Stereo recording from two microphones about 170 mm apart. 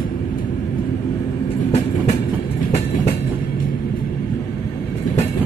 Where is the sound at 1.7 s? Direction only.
40° left (ahead or behind).